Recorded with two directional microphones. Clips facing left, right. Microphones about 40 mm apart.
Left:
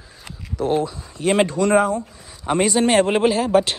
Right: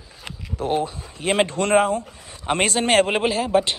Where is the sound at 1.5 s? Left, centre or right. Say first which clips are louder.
Left 1 dB; right.